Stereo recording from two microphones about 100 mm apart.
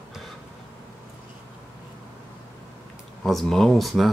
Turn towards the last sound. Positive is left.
turn(degrees=0)  # may be behind; listen again after turning